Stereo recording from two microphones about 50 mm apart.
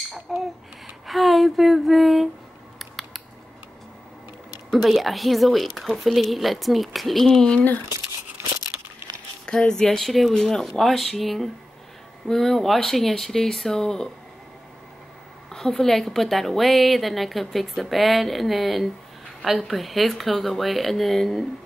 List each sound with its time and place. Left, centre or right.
0.3 s a woman's voice: centre
1.0 s a sound: centre
4.6 s a woman's voice: centre
7.2 s speech: centre
7.9 s a sound: right
9.5 s a woman's voice: centre
15.5 s a woman's voice: centre